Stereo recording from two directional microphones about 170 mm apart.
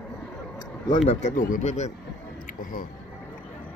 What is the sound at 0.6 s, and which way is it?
Speech, 30° left (ahead or behind).